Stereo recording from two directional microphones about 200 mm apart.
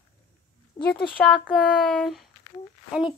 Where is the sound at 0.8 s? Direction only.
20° left (ahead or behind).